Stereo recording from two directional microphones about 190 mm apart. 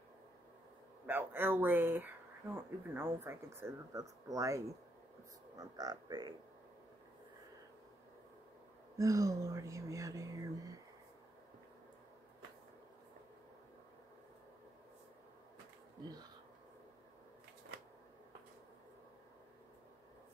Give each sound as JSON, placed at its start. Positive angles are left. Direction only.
{"t": 1.0, "sound": "speech", "side_deg": -10}
{"t": 8.9, "sound": "speech", "side_deg": -15}